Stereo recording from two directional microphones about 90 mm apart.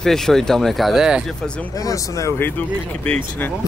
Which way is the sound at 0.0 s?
5° left (ahead or behind).